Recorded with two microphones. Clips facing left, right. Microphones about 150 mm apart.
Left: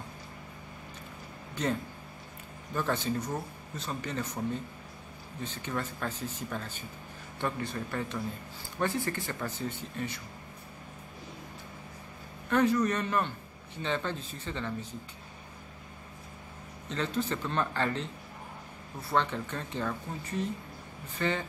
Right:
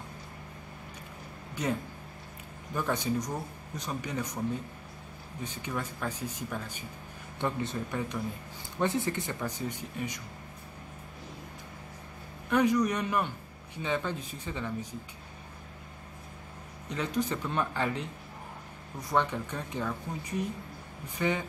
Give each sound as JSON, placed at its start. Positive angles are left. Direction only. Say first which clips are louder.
{"t": 1.5, "sound": "speech", "louder": "even", "side_deg": -10}
{"t": 5.4, "sound": "speech", "louder": "left 1 dB", "side_deg": -10}
{"t": 12.4, "sound": "speech", "louder": "even", "side_deg": -15}
{"t": 16.9, "sound": "speech", "louder": "right 1 dB", "side_deg": -15}